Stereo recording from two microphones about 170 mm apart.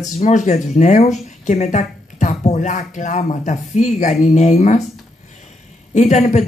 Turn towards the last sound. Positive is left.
turn(degrees=45)  # may be behind; listen again after turning